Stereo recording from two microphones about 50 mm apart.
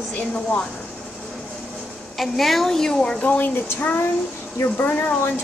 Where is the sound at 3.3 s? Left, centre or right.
Left.